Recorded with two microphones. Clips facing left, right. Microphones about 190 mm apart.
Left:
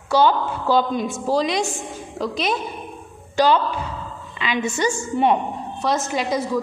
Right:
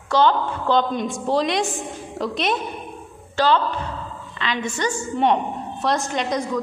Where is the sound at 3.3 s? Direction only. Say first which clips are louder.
Left 2 dB; 10° left (ahead or behind).